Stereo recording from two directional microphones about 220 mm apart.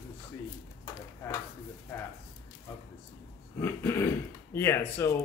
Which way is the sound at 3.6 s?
10° left (ahead or behind).